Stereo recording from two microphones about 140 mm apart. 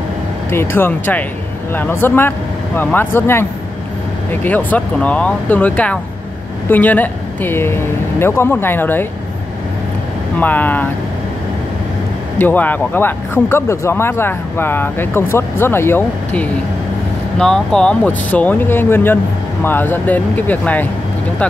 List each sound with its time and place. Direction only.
0.5 s speech: 15° left (ahead or behind)
10.4 s speech: 10° left (ahead or behind)
12.4 s speech: 15° left (ahead or behind)
17.4 s speech: 5° left (ahead or behind)